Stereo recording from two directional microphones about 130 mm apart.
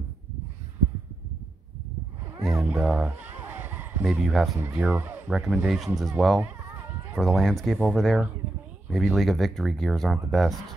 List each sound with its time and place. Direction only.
2.4 s speech: 5° right (ahead or behind)
3.3 s a sound: 15° right (ahead or behind)
4.0 s speech: 5° right (ahead or behind)
4.6 s speech: 15° right (ahead or behind)
6.4 s a sound: 15° right (ahead or behind)
7.2 s speech: centre (ahead or behind)